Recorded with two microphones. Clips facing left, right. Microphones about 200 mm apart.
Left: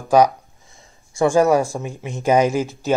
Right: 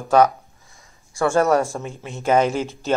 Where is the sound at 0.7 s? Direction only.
25° left (ahead or behind).